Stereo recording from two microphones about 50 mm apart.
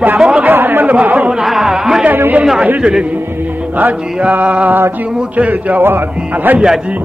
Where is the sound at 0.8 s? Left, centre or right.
Right.